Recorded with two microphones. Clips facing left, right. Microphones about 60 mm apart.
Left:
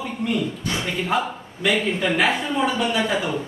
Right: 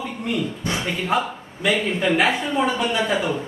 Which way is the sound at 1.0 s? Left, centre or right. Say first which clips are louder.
Right 2 dB; centre.